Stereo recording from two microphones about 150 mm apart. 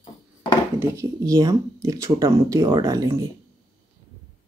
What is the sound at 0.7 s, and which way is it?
Speech, 20° right (ahead or behind).